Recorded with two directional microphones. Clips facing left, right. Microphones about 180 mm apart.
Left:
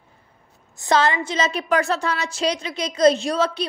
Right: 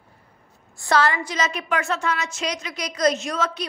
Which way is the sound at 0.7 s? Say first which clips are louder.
Left 2 dB; 20° left (ahead or behind).